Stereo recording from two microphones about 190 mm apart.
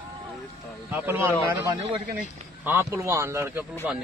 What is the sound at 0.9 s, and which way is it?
Speech, 10° right (ahead or behind).